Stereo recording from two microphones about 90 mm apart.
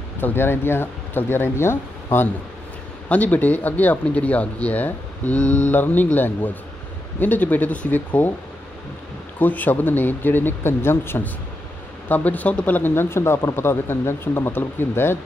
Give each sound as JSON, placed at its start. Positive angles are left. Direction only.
{"t": 0.2, "sound": "speech", "side_deg": 25}
{"t": 9.4, "sound": "speech", "side_deg": 20}